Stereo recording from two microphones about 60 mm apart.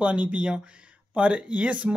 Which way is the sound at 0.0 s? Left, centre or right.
Right.